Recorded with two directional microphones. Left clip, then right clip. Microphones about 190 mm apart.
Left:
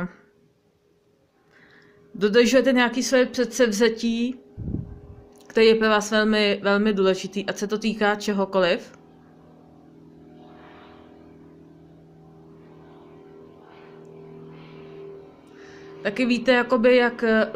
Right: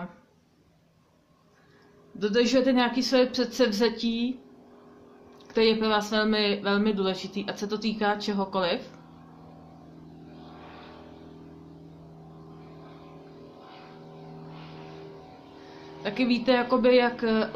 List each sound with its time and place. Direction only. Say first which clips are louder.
2.1 s speech: left 6 dB; 40° left (ahead or behind)
5.5 s speech: left 6 dB; 30° left (ahead or behind)
16.0 s speech: left 4 dB; 30° left (ahead or behind)